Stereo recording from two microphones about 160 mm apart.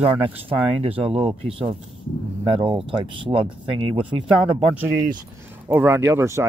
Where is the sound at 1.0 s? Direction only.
35° right (ahead or behind).